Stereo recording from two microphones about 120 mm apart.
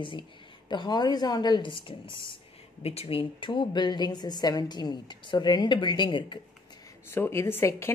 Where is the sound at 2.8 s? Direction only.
60° left (ahead or behind); by 6.4 s 40° left (ahead or behind).